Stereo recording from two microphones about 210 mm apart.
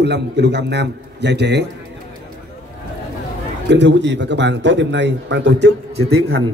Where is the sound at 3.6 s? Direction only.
55° right (ahead or behind).